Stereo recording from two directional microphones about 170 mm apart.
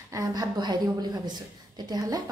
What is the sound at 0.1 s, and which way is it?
A woman's voice, 20° right (ahead or behind).